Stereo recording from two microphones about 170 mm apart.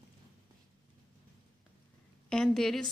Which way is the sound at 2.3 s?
5° left (ahead or behind).